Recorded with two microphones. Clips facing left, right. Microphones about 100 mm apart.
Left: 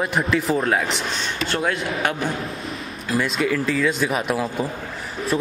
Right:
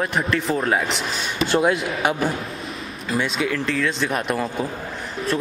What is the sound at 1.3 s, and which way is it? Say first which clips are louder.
Speech: right 6 dB; 20° right (ahead or behind).